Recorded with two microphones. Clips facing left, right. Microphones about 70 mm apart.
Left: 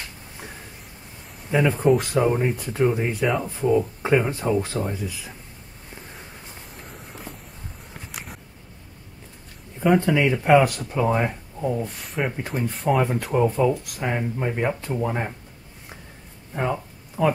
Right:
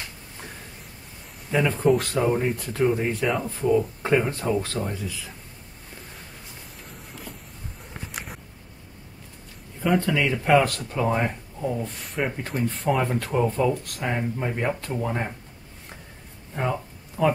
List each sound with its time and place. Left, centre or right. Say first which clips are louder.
1.5 s speech: left 2 dB; centre
3.3 s speech: left 1 dB; centre
9.9 s speech: left 1 dB; left
16.5 s a sound: left 2 dB; centre